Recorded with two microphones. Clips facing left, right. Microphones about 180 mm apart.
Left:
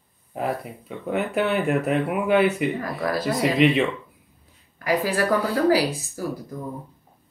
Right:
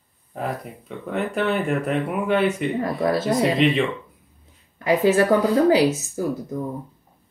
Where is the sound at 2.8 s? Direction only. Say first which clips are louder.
Right 4 dB; 25° right (ahead or behind).